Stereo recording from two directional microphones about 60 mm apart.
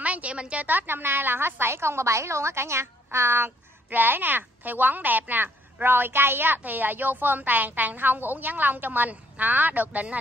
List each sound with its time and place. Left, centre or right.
0.0 s a woman's voice: right